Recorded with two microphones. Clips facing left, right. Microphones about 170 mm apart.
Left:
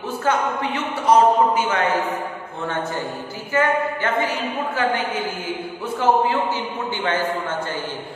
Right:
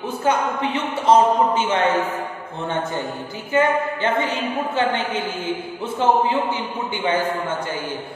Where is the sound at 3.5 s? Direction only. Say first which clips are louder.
Right 1 dB; 20° right (ahead or behind).